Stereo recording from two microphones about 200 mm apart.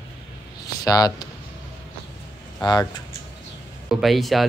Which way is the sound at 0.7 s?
20° left (ahead or behind).